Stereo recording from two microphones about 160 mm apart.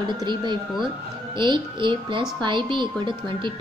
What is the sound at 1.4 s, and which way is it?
A woman's voice, 30° right (ahead or behind).